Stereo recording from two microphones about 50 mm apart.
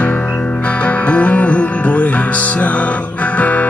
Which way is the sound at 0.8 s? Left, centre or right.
Left.